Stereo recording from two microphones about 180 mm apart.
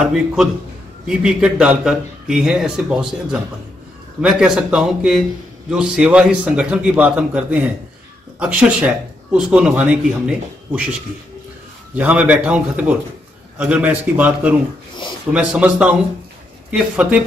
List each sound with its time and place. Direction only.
0.0 s speech: 5° right (ahead or behind)